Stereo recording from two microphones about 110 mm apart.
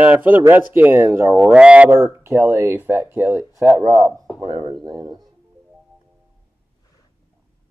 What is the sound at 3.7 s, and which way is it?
Speech, 30° right (ahead or behind).